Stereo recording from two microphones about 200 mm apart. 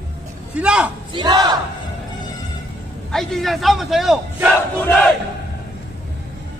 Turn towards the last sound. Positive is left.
turn(degrees=5)  # may be behind; listen again after turning